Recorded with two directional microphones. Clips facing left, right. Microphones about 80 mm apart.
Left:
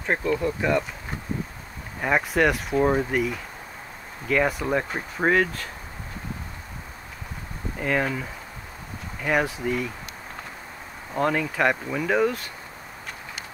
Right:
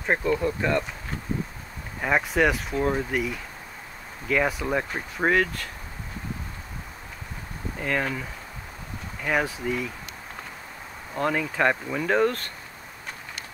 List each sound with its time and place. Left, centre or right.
0.0 s speech: centre
2.0 s speech: centre
2.8 s speech: centre
3.1 s speech: centre
7.8 s speech: centre
11.1 s speech: centre